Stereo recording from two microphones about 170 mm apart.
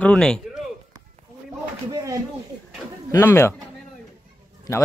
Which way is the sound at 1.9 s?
20° right (ahead or behind).